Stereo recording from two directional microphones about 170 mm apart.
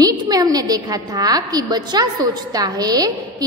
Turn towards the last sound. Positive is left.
turn(degrees=-20)  # may be behind; listen again after turning